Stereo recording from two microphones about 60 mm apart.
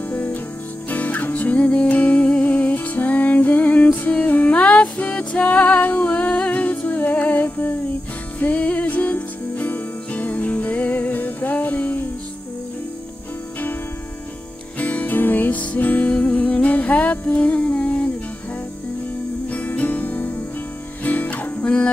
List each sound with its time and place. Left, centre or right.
0.1 s music: left
14.8 s music: left
19.5 s music: left
21.6 s a sound: centre